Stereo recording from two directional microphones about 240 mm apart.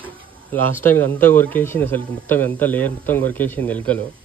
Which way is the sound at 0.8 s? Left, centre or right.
Centre.